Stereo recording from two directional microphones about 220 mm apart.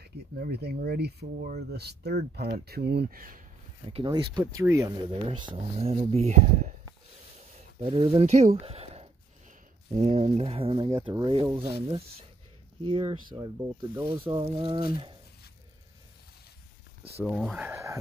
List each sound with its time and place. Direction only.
0.0 s speech: 45° right (ahead or behind)
3.9 s speech: 20° right (ahead or behind)
7.3 s a sound: 30° right (ahead or behind)
9.9 s speech: 30° right (ahead or behind)
12.8 s speech: 25° right (ahead or behind)
17.0 s speech: 5° right (ahead or behind)